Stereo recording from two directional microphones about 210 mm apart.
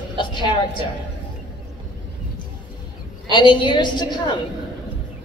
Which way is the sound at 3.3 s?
20° left (ahead or behind).